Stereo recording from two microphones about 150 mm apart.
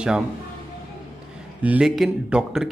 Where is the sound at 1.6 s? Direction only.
10° right (ahead or behind).